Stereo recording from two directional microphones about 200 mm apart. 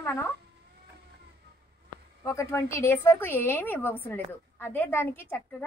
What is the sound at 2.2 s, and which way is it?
A woman's voice, 15° left (ahead or behind).